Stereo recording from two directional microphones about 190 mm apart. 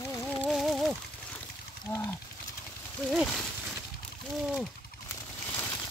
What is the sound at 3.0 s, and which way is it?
Speech, centre (ahead or behind).